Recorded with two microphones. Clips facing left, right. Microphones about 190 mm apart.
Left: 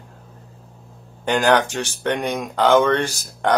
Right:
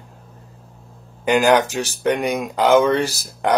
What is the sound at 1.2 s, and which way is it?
Speech, 10° right (ahead or behind).